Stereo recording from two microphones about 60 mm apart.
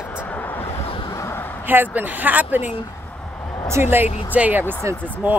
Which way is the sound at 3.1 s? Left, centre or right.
Centre.